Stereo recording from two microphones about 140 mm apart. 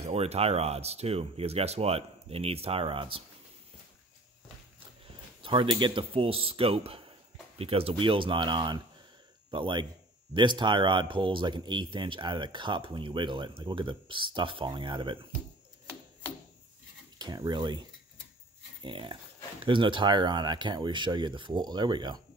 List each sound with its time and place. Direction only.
0.0 s speech: 50° right (ahead or behind)
5.4 s speech: 35° right (ahead or behind)
17.2 s speech: 30° right (ahead or behind)